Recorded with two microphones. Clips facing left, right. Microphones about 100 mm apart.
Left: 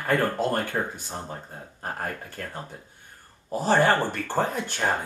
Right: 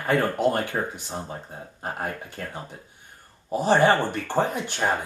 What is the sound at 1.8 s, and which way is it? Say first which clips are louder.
Speech: right 1 dB; 15° right (ahead or behind).